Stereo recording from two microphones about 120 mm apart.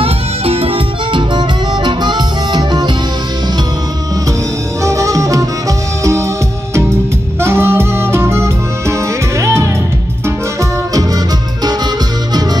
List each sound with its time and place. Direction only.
0.0 s music: 55° right (ahead or behind)
4.8 s music: 25° right (ahead or behind)
7.3 s music: 20° right (ahead or behind)